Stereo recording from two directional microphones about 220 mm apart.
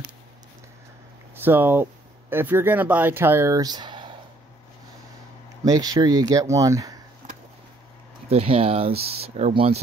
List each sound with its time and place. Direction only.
1.3 s speech: 10° right (ahead or behind)
5.7 s speech: 15° right (ahead or behind)
8.3 s speech: 25° right (ahead or behind)
8.9 s speech: 45° right (ahead or behind)
9.2 s speech: 25° right (ahead or behind)